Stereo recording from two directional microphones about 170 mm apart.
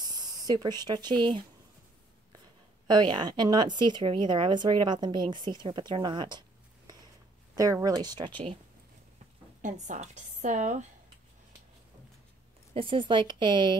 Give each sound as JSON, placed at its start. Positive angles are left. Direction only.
{"t": 0.0, "sound": "speech", "side_deg": -25}
{"t": 2.9, "sound": "speech", "side_deg": -25}
{"t": 7.5, "sound": "speech", "side_deg": -20}
{"t": 9.6, "sound": "a woman's voice", "side_deg": -45}
{"t": 12.7, "sound": "speech", "side_deg": -30}